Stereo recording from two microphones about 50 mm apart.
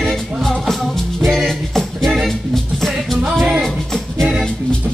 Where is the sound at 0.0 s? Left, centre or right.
Centre.